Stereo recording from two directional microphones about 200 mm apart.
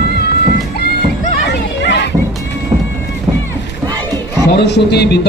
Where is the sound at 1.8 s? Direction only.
60° left (ahead or behind).